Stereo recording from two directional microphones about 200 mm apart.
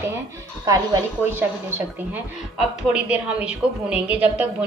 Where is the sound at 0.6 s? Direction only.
15° right (ahead or behind).